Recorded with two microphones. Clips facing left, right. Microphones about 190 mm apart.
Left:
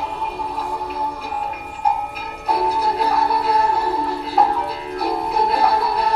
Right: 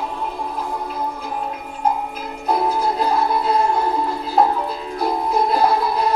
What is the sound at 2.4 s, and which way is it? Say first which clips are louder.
Music: right 1 dB; 65° left (ahead or behind).